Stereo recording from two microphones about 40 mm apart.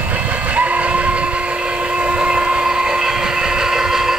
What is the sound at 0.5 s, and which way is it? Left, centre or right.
Train, right.